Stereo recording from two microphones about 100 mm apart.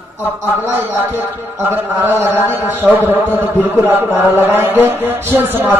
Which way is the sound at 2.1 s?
20° right (ahead or behind).